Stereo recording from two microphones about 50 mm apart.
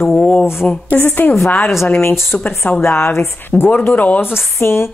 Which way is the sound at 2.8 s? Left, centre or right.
Left.